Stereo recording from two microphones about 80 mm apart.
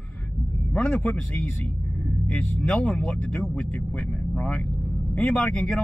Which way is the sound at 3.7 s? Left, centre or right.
Centre.